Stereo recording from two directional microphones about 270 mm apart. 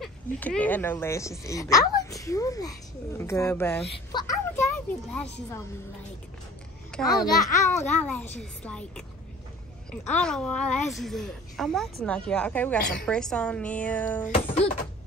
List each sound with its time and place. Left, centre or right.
0.0 s a woman's voice: centre
7.1 s a woman's voice: centre
10.1 s a woman's voice: centre
14.3 s music: left